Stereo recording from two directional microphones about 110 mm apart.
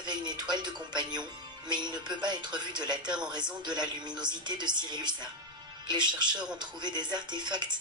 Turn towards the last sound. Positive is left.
turn(degrees=-40)  # may be behind; listen again after turning